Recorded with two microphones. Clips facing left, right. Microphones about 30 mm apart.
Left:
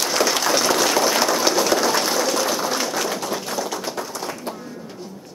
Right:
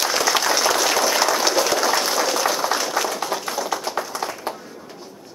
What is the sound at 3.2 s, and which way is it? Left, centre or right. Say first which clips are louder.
Tap: even; centre.